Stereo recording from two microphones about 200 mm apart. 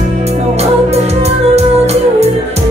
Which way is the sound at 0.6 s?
30° right (ahead or behind).